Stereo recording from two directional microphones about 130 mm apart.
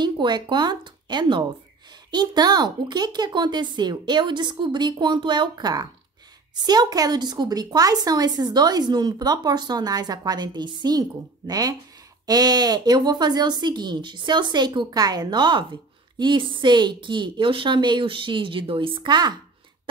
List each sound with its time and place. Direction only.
0.0 s speech: 35° right (ahead or behind)